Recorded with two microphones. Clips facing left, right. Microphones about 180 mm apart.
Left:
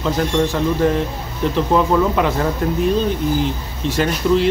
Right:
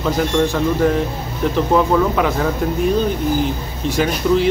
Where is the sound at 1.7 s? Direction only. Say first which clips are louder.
Even; centre (ahead or behind).